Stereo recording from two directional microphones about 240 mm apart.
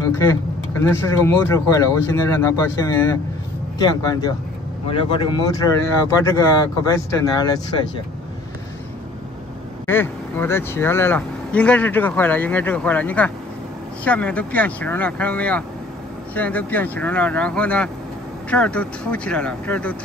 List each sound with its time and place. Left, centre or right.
0.1 s speech: centre
9.8 s speech: centre